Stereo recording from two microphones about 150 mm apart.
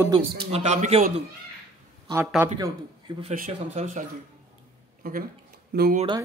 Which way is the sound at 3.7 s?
50° right (ahead or behind).